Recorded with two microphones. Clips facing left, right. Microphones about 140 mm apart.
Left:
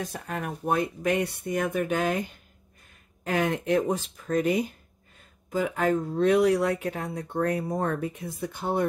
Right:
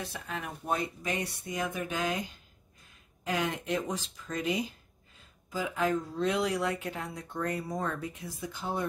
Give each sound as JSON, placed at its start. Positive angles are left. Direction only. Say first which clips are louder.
{"t": 0.0, "sound": "speech", "louder": "left 5 dB", "side_deg": 45}